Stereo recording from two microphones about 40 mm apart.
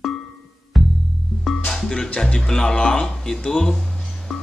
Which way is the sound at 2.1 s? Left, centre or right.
Centre.